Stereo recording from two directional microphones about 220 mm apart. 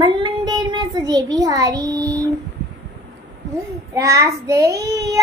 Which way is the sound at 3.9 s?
15° right (ahead or behind).